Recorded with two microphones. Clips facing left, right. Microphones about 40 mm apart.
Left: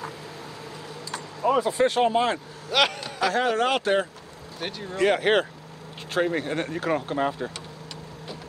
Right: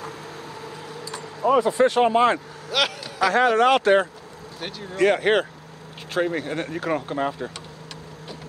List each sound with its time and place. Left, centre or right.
1.7 s speech: right
2.0 s speech: right
2.7 s speech: centre
3.3 s speech: right
4.6 s speech: centre